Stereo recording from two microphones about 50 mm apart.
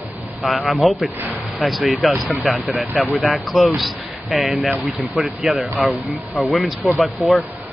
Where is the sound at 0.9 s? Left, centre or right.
Right.